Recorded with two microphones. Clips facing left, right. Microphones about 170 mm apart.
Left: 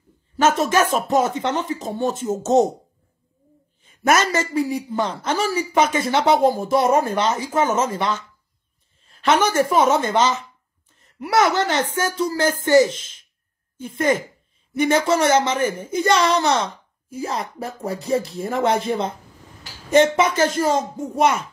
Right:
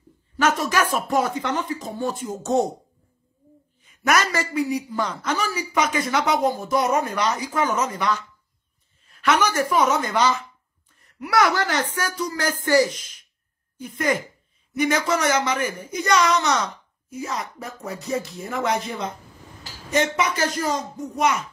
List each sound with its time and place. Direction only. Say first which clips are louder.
0.4 s a woman's voice: left 4 dB; 25° left (ahead or behind)
3.8 s a woman's voice: left 3 dB; 30° left (ahead or behind)